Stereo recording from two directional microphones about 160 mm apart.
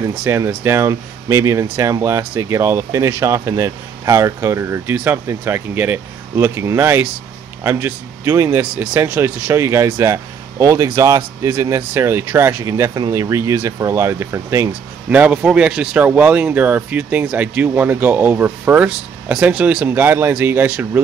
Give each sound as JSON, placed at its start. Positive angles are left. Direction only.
{"t": 0.1, "sound": "speech", "side_deg": -10}